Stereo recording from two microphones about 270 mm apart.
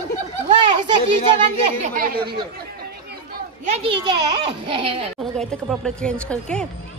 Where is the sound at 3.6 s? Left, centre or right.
Right.